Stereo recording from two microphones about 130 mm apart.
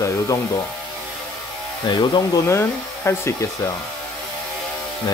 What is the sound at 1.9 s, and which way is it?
Speech, 30° left (ahead or behind).